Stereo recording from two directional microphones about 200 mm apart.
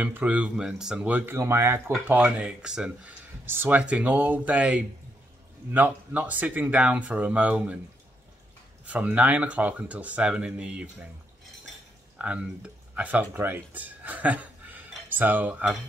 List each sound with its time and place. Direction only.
0.0 s speech: 10° right (ahead or behind)
8.8 s speech: 5° right (ahead or behind)
12.2 s speech: 5° right (ahead or behind)